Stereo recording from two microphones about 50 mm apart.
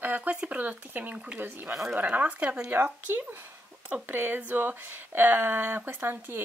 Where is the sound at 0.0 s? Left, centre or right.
Right.